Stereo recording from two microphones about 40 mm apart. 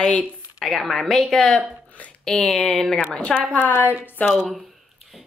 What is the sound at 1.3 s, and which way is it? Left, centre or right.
A woman's voice, centre.